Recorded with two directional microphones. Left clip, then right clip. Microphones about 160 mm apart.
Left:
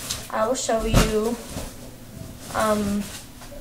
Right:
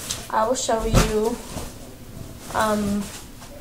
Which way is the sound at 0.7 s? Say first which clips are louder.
Right 1 dB; 25° right (ahead or behind).